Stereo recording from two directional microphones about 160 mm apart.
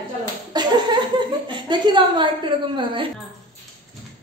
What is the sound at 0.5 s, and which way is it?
Laughter, 25° right (ahead or behind).